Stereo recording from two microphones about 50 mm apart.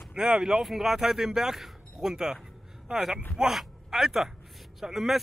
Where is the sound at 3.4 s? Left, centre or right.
Centre.